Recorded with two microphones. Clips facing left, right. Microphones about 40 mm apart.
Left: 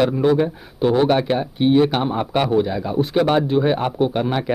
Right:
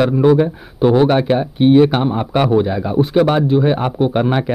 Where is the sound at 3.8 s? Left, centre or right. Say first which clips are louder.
Right 4 dB; centre.